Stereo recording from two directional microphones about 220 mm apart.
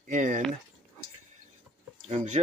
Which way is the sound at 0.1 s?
35° right (ahead or behind).